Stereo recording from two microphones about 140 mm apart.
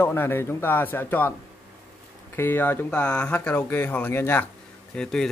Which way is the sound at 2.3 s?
15° left (ahead or behind).